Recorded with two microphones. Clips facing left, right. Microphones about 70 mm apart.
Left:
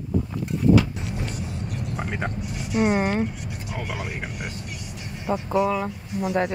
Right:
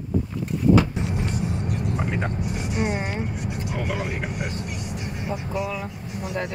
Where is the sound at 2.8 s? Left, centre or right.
Left.